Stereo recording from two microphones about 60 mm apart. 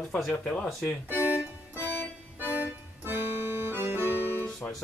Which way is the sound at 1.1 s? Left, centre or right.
Right.